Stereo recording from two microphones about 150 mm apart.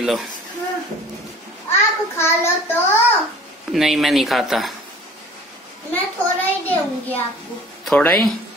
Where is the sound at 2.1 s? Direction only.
15° left (ahead or behind).